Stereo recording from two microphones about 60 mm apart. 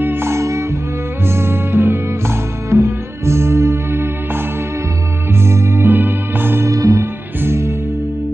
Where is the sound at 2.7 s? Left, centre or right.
Right.